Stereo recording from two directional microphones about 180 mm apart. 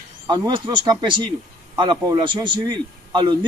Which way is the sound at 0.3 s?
25° right (ahead or behind).